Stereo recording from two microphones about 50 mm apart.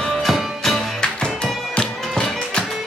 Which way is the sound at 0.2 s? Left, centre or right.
Centre.